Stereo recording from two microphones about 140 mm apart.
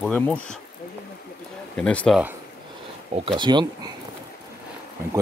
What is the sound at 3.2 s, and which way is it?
Speech, 35° right (ahead or behind).